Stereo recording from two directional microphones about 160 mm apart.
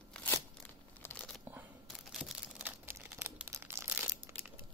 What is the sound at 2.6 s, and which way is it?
Crumpling, 10° right (ahead or behind).